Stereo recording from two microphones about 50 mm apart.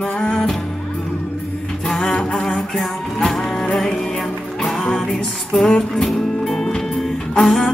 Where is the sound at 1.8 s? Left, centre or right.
Centre.